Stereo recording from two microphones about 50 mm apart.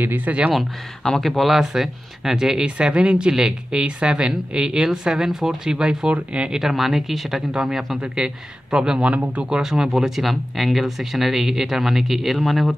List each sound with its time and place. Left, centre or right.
0.0 s speech: right
1.0 s speech: centre; by 6.6 s right
6.6 s speech: centre
9.1 s speech: right
9.5 s speech: centre